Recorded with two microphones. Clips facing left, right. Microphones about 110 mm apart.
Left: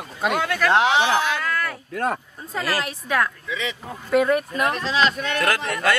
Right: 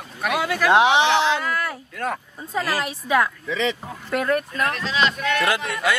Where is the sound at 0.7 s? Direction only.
20° right (ahead or behind).